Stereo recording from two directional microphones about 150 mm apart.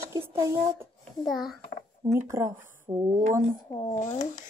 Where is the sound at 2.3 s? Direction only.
20° right (ahead or behind).